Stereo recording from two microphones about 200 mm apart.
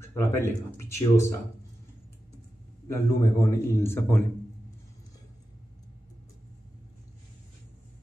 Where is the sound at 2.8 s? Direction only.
15° left (ahead or behind).